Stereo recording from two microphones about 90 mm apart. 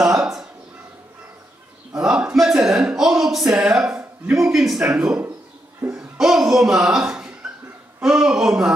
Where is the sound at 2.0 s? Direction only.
10° right (ahead or behind).